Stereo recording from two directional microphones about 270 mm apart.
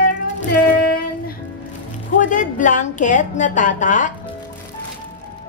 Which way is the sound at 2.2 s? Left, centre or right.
Left.